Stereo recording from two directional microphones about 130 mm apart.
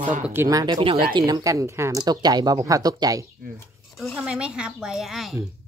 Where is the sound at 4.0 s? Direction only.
Centre (ahead or behind).